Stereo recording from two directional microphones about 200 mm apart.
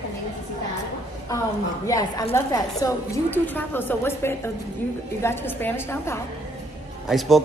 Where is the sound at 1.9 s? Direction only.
20° left (ahead or behind).